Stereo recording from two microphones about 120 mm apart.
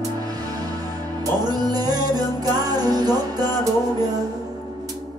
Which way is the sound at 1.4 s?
35° right (ahead or behind).